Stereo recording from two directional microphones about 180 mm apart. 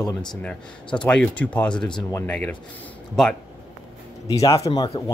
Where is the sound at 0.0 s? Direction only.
25° left (ahead or behind).